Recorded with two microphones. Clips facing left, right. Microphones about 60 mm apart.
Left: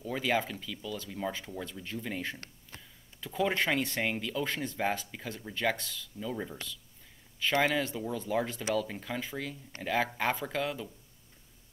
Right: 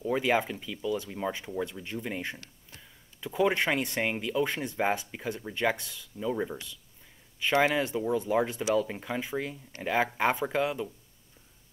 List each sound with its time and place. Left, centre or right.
0.0 s speech: right